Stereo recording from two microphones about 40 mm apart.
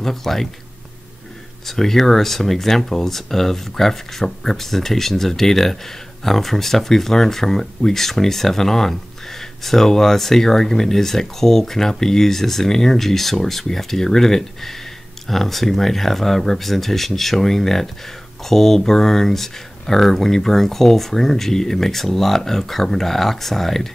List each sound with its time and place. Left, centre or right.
0.0 s speech: centre
1.7 s speech: centre